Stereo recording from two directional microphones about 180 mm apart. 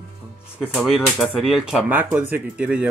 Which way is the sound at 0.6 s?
Centre (ahead or behind).